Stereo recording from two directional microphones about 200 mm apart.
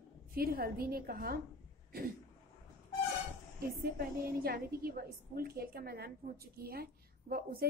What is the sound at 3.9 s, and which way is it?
A woman's voice, 50° right (ahead or behind).